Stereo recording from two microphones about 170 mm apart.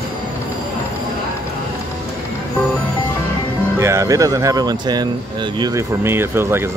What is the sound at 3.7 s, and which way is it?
Speech, 15° right (ahead or behind).